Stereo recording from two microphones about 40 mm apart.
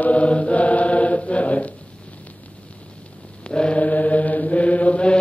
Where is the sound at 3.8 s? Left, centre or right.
Left.